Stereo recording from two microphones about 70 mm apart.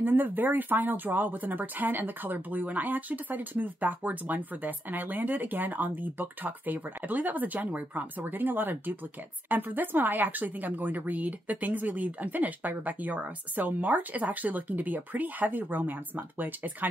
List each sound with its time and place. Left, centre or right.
0.0 s speech: right